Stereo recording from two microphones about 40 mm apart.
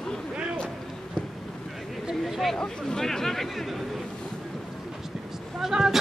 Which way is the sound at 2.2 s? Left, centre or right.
Centre.